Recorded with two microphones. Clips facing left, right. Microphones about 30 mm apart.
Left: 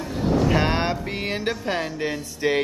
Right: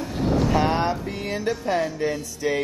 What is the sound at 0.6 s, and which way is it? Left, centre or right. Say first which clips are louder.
Mantra: right 1 dB; left.